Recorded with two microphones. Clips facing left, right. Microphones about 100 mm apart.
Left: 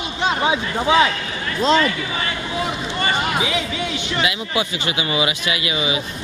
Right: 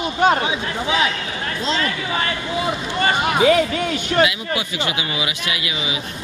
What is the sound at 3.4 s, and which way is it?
Speech, 50° right (ahead or behind).